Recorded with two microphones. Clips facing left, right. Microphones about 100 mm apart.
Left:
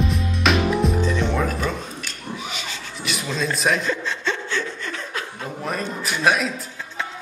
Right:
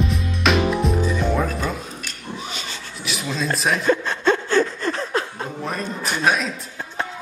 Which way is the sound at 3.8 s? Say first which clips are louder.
Right 6 dB; 50° right (ahead or behind).